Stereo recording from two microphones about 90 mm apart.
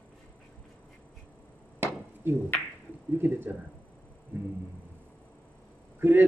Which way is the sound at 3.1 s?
25° right (ahead or behind).